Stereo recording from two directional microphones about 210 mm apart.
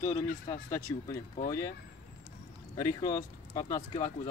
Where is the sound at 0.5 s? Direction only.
15° left (ahead or behind).